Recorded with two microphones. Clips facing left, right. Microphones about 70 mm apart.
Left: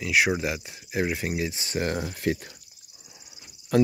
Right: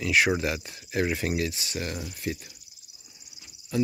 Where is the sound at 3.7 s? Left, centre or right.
Left.